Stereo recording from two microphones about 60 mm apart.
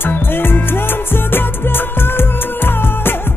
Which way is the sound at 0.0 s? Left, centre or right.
Left.